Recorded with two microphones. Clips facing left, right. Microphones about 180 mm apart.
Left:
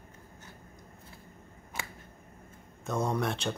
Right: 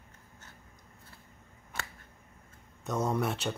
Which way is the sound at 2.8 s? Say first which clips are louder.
Even; 5° right (ahead or behind).